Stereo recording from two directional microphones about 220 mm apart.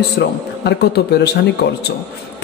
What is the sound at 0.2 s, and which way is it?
Speech, 50° left (ahead or behind).